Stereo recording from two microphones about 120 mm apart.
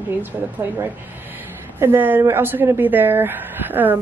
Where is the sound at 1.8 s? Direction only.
20° right (ahead or behind).